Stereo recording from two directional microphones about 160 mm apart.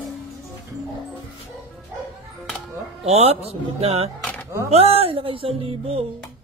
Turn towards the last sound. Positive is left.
turn(degrees=-35)  # may be behind; listen again after turning